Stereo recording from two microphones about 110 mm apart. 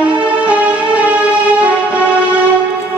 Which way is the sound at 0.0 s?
10° right (ahead or behind).